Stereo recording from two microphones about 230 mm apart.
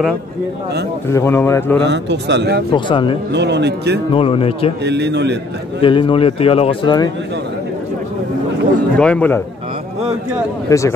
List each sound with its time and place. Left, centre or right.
1.1 s speech: centre
1.9 s a man's voice: right
2.7 s a man's voice: left
3.3 s a man's voice: right
4.1 s a man's voice: left
4.8 s a man's voice: right
5.8 s a man's voice: left
8.9 s a man's voice: centre
10.7 s speech: centre